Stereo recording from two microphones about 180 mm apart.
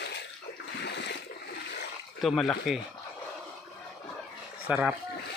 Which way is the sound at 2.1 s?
Centre (ahead or behind).